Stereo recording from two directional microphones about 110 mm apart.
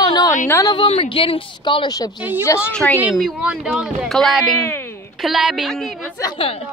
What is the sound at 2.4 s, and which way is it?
Speech, 25° left (ahead or behind).